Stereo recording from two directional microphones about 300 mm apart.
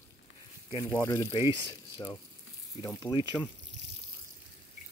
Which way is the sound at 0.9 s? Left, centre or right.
Centre.